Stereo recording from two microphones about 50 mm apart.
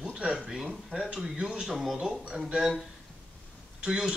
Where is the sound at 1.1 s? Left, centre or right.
Centre.